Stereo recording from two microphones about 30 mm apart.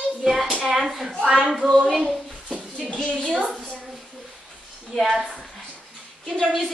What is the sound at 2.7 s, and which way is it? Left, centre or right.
Speech, left.